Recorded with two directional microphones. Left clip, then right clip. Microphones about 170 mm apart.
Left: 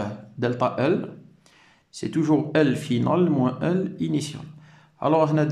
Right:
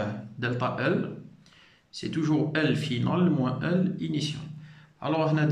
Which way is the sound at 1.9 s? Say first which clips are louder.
Left 6 dB; 40° left (ahead or behind).